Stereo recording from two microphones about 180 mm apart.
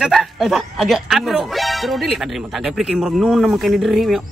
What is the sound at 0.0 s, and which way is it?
Speech, centre (ahead or behind).